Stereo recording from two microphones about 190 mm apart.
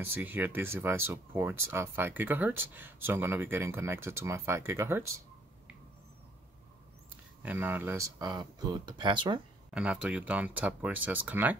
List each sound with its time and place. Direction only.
0.0 s speech: 10° right (ahead or behind)
7.4 s speech: 10° right (ahead or behind)
9.8 s speech: 5° right (ahead or behind)